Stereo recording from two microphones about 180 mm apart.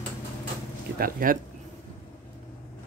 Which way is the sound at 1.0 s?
50° right (ahead or behind).